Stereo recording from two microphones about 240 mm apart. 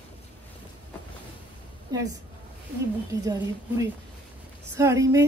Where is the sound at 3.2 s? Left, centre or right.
Centre.